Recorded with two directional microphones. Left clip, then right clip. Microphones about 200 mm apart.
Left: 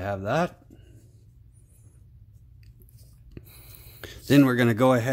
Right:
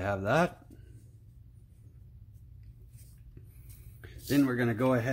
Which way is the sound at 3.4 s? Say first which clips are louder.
Left 13 dB; 50° left (ahead or behind).